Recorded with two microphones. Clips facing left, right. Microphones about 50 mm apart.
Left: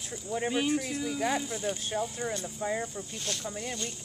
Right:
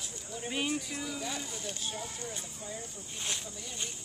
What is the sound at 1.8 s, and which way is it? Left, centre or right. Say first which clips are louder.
Speech: left 8 dB; left.